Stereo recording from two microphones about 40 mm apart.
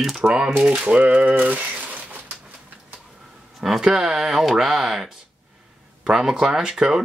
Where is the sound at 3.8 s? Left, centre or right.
Centre.